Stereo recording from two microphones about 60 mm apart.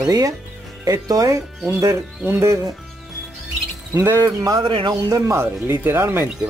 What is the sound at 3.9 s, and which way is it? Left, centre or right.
Speech, right.